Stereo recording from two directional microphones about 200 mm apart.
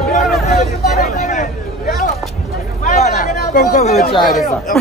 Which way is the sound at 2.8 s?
35° left (ahead or behind).